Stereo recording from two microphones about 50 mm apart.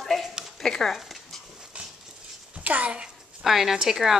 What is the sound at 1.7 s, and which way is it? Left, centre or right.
Dog, right.